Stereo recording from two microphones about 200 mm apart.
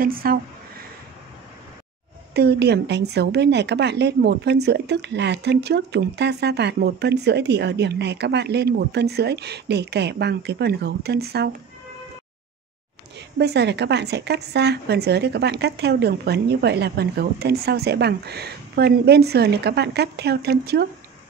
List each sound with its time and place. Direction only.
0.0 s a sound: 45° right (ahead or behind)
2.3 s a woman's voice: 55° right (ahead or behind)
13.4 s a woman's voice: 55° right (ahead or behind)